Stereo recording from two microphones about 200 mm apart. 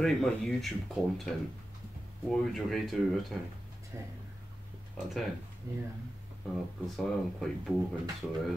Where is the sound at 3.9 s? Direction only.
10° right (ahead or behind).